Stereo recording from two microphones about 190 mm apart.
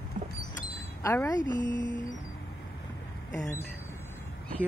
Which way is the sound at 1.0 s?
10° left (ahead or behind).